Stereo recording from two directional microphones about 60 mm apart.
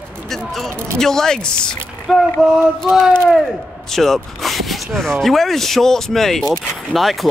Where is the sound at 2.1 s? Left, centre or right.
Centre.